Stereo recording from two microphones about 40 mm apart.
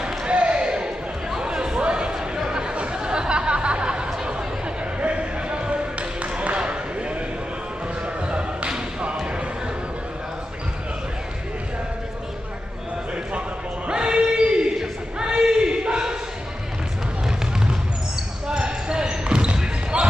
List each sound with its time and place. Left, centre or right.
0.3 s basketball bounce: right
1.3 s chatter: centre
5.0 s basketball bounce: right
6.6 s chop: right
8.3 s a sound: right
13.8 s a sound: right
18.5 s basketball bounce: right